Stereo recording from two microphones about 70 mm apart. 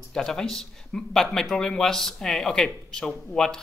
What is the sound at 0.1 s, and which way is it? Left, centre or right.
A man's voice, centre.